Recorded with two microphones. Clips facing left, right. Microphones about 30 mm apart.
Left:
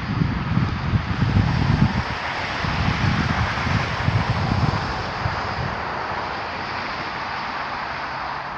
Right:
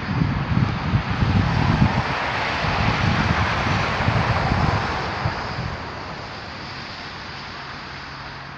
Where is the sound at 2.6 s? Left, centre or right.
Right.